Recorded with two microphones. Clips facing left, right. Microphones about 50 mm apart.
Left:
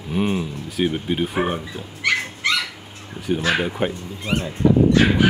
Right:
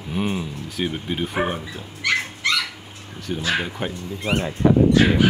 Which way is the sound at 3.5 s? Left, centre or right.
Centre.